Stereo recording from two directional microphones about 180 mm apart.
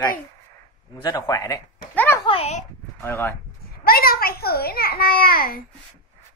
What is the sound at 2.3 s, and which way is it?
Speech, 35° left (ahead or behind).